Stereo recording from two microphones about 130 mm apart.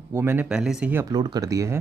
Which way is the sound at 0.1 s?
15° right (ahead or behind).